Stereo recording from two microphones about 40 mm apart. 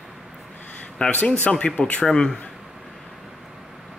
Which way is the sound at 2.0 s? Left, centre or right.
Centre.